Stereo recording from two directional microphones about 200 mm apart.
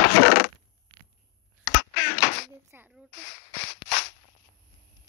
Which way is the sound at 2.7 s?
10° right (ahead or behind).